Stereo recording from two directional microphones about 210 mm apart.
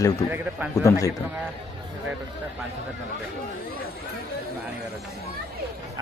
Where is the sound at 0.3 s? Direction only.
10° right (ahead or behind).